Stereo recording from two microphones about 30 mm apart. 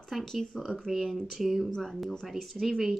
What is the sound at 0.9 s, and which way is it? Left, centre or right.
Speech, right.